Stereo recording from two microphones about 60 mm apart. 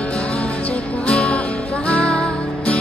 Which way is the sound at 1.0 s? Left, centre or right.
Centre.